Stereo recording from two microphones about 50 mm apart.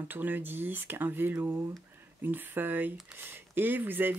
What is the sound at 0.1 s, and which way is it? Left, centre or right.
Speech, right.